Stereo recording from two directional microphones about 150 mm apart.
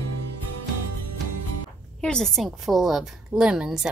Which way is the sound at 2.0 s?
5° left (ahead or behind).